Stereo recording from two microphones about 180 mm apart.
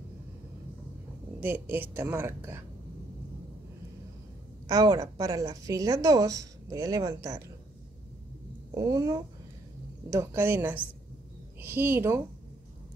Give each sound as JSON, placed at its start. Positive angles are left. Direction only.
{"t": 1.4, "sound": "a woman's voice", "side_deg": -10}
{"t": 4.6, "sound": "a woman's voice", "side_deg": -20}
{"t": 8.7, "sound": "a woman's voice", "side_deg": -20}